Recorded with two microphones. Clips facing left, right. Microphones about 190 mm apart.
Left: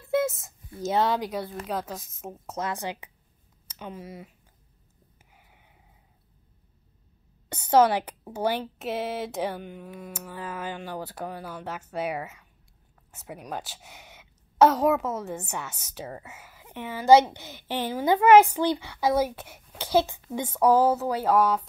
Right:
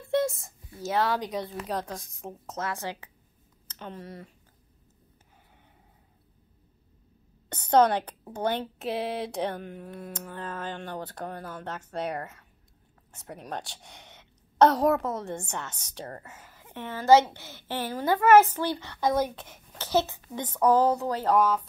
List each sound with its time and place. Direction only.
0.1 s a sound: centre (ahead or behind)
0.8 s speech: 20° left (ahead or behind)
1.2 s a woman's voice: 5° left (ahead or behind)
3.6 s speech: 5° left (ahead or behind)
7.4 s a woman's voice: 10° left (ahead or behind)